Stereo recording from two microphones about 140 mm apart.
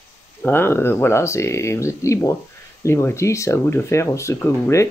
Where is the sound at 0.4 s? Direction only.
15° left (ahead or behind).